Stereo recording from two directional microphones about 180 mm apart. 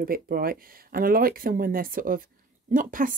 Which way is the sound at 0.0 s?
55° right (ahead or behind).